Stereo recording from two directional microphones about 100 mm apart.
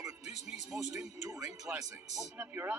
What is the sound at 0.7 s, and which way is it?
Speech, 15° right (ahead or behind).